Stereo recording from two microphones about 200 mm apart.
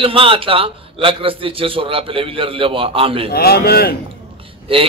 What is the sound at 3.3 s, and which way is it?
Speech, 50° left (ahead or behind).